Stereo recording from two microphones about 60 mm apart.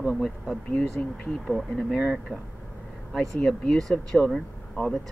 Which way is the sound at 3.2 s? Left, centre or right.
Centre.